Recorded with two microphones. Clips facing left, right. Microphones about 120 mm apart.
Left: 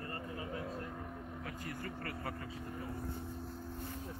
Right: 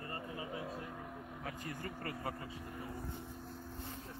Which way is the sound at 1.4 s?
25° right (ahead or behind).